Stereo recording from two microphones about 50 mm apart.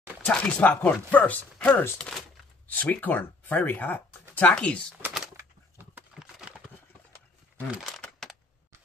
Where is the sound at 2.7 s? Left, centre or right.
Left.